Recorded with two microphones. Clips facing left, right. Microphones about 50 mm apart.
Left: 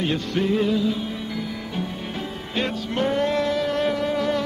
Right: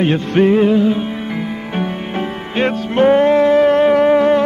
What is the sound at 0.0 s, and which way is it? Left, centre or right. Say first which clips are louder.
Music: right 10 dB; right.